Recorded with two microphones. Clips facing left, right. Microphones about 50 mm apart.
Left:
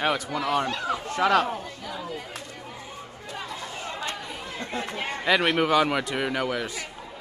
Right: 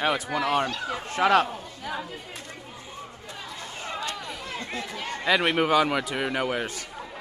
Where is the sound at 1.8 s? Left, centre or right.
Right.